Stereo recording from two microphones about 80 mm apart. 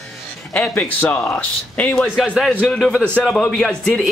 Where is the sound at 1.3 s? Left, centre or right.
Centre.